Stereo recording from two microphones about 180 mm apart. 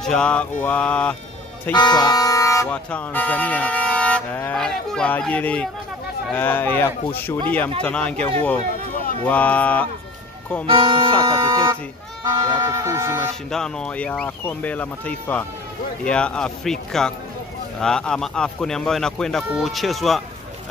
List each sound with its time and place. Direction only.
0.0 s speech: 5° left (ahead or behind)
1.7 s speech: 25° left (ahead or behind); by 9.8 s 5° left (ahead or behind)
10.7 s speech: 30° right (ahead or behind)
13.5 s speech: 5° left (ahead or behind)